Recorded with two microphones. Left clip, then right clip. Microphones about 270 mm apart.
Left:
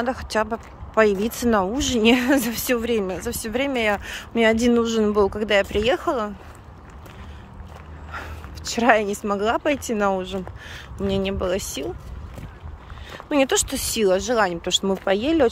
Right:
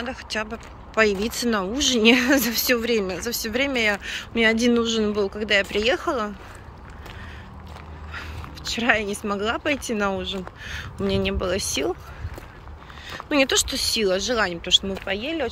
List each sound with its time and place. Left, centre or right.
0.0 s speech: left
8.1 s speech: centre
13.1 s speech: centre